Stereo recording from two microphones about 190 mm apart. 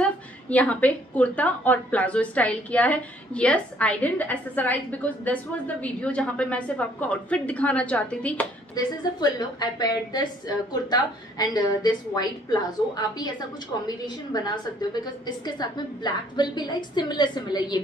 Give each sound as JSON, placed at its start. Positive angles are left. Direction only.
{"t": 0.0, "sound": "a woman's voice", "side_deg": 5}
{"t": 8.7, "sound": "a woman's voice", "side_deg": 20}